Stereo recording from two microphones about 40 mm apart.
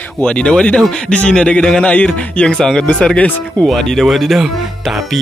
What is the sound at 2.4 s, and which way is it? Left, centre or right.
Speech, centre.